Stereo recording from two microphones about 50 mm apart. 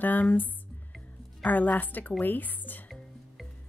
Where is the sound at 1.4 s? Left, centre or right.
Left.